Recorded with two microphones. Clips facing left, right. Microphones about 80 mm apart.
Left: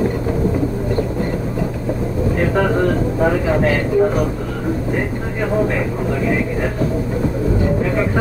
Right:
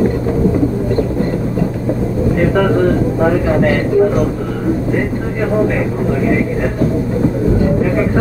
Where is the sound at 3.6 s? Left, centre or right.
Right.